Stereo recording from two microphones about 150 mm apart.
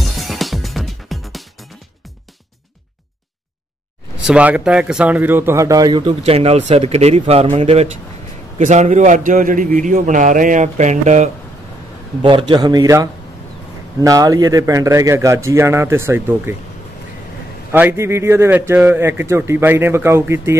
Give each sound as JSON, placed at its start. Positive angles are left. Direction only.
{"t": 0.2, "sound": "music", "side_deg": 0}
{"t": 4.3, "sound": "a man's voice", "side_deg": -10}
{"t": 12.2, "sound": "a man's voice", "side_deg": -35}
{"t": 17.6, "sound": "a man's voice", "side_deg": -15}